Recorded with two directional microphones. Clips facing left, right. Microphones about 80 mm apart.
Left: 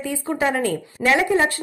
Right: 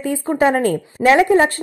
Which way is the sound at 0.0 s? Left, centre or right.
Right.